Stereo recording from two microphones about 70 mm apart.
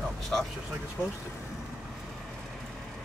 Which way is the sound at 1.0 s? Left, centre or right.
Centre.